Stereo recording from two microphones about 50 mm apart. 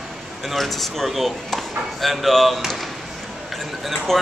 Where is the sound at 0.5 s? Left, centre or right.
Centre.